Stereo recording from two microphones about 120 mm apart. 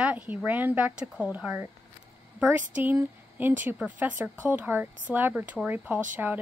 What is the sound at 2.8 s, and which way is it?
Speech, 15° right (ahead or behind).